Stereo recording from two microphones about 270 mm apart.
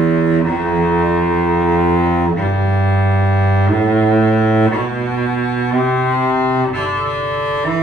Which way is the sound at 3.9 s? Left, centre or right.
Centre.